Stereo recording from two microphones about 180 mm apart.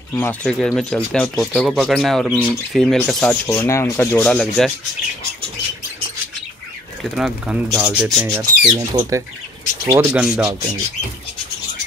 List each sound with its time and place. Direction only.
0.1 s speech: 10° left (ahead or behind)
3.4 s speech: 15° left (ahead or behind)
7.0 s speech: 5° right (ahead or behind)
8.7 s speech: 15° right (ahead or behind)